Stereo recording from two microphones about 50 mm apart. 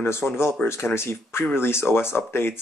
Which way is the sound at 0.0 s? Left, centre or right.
Left.